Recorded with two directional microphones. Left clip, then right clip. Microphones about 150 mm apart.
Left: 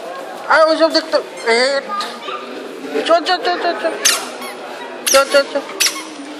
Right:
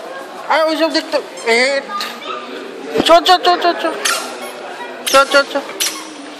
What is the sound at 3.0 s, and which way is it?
Speech, 35° right (ahead or behind).